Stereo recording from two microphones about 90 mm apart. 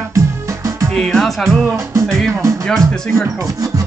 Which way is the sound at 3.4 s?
40° right (ahead or behind).